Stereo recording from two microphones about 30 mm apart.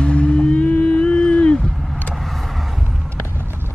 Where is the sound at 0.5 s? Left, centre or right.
Left.